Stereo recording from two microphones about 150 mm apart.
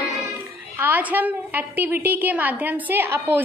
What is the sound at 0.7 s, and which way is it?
A woman's voice, 10° right (ahead or behind).